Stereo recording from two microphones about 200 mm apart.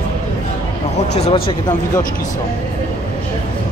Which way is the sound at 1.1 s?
30° left (ahead or behind).